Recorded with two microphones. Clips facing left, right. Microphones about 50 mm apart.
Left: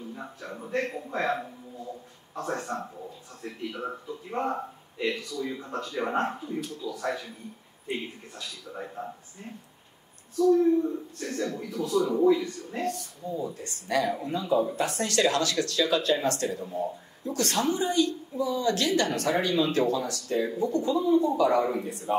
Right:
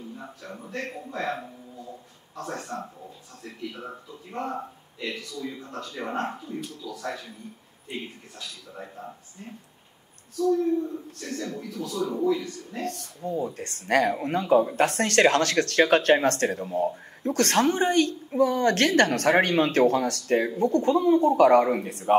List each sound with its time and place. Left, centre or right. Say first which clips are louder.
0.7 s a man's voice: left 5 dB; left
2.7 s a man's voice: left 1 dB; left
10.3 s a man's voice: left 2 dB; left
12.8 s speech: right 1 dB; right